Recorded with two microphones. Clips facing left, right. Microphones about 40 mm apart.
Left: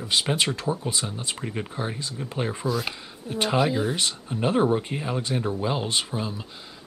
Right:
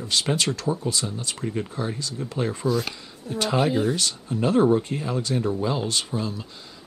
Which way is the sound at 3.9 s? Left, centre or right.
Left.